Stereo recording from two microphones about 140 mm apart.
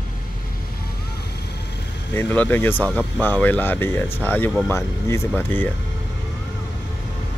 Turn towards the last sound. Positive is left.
turn(degrees=15)  # may be behind; listen again after turning